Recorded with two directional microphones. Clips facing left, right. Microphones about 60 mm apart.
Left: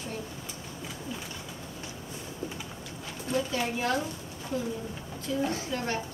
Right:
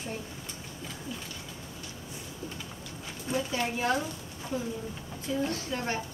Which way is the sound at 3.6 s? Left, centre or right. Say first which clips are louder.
Even; centre.